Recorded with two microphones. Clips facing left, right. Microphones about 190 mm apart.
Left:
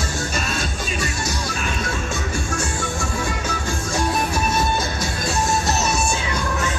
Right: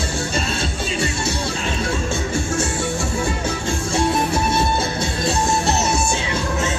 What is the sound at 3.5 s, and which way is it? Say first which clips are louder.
Music: right 3 dB; 25° right (ahead or behind).